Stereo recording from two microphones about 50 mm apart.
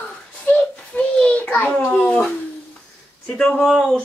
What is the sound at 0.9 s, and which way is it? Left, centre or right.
Speech, left.